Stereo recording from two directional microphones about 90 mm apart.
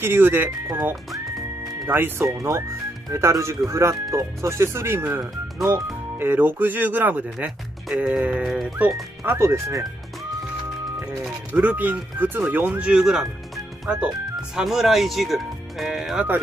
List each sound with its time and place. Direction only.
0.0 s speech: 25° right (ahead or behind)
7.9 s speech: 5° right (ahead or behind)
8.5 s speech: 5° right (ahead or behind)
9.2 s speech: 30° right (ahead or behind)
11.5 s speech: 20° right (ahead or behind); by 16.3 s 5° right (ahead or behind)